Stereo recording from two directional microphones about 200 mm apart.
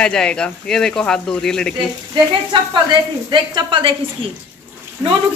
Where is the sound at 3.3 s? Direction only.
25° right (ahead or behind).